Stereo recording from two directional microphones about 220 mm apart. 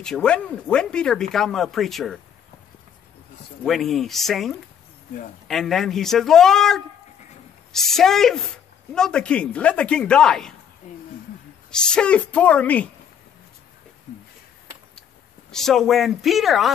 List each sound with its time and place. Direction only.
0.0 s speech: 5° left (ahead or behind)
3.6 s speech: centre (ahead or behind)
10.8 s speech: 35° left (ahead or behind)
11.7 s speech: 5° left (ahead or behind)
15.5 s speech: centre (ahead or behind)